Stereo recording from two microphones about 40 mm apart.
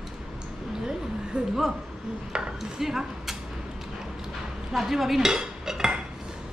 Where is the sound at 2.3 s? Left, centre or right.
Centre.